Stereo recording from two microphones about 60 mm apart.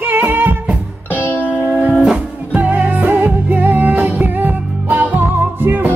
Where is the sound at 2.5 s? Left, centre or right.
Right.